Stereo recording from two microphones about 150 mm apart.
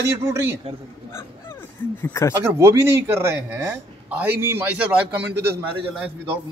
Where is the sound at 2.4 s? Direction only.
20° right (ahead or behind).